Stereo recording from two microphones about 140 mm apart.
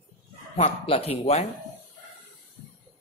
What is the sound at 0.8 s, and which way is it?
Speech, 45° left (ahead or behind).